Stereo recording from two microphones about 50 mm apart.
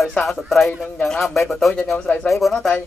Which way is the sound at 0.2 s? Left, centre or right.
Centre.